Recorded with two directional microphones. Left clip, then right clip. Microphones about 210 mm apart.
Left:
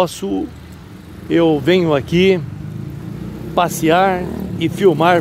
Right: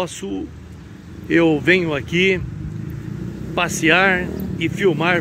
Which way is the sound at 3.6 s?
10° left (ahead or behind).